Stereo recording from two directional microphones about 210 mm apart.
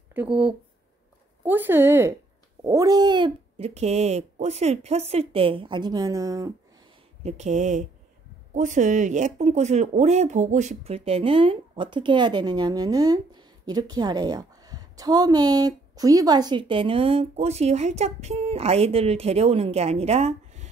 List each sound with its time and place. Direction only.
0.1 s speech: 5° right (ahead or behind)
7.2 s speech: 35° right (ahead or behind)